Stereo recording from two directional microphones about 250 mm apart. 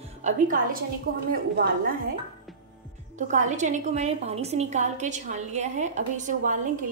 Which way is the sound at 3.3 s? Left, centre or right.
Right.